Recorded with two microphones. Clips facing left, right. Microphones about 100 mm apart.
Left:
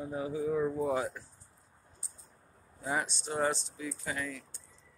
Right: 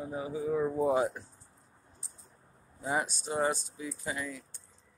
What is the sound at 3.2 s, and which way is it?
Speech, 10° right (ahead or behind).